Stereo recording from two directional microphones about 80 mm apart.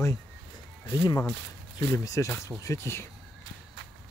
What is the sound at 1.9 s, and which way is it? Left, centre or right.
Speech, left.